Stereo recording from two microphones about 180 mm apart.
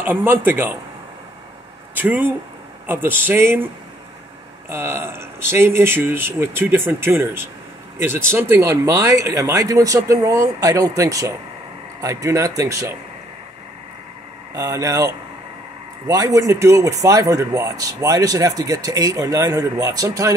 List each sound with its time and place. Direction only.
0.0 s speech: 10° right (ahead or behind)
2.0 s speech: 10° right (ahead or behind)
4.6 s speech: 15° right (ahead or behind)
14.5 s speech: 20° right (ahead or behind)